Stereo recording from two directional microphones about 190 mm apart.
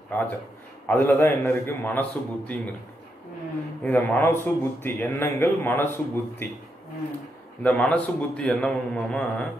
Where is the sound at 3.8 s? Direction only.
10° left (ahead or behind).